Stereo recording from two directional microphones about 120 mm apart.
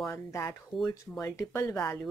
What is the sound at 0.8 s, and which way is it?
Speech, 30° left (ahead or behind).